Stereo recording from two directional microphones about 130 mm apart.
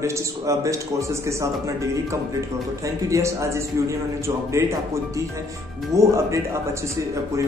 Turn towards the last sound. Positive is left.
turn(degrees=-25)  # may be behind; listen again after turning